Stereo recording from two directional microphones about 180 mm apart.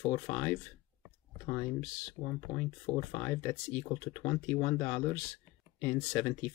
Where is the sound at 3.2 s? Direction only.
10° left (ahead or behind).